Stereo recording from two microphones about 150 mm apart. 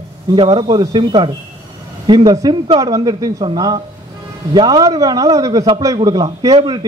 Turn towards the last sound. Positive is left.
turn(degrees=-30)  # may be behind; listen again after turning